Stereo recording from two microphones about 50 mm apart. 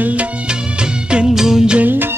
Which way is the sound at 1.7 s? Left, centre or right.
Right.